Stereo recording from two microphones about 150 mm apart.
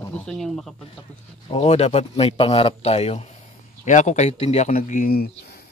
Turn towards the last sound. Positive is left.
turn(degrees=75)  # may be behind; listen again after turning